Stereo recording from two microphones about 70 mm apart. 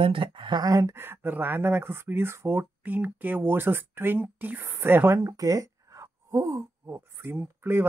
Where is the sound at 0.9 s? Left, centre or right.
Right.